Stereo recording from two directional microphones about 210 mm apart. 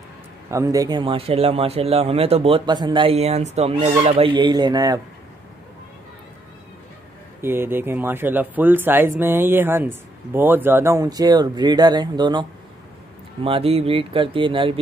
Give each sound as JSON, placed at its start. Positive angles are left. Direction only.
{"t": 0.5, "sound": "speech", "side_deg": -15}
{"t": 7.4, "sound": "speech", "side_deg": -10}